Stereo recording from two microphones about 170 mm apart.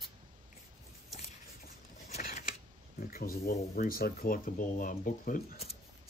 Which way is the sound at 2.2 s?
55° left (ahead or behind).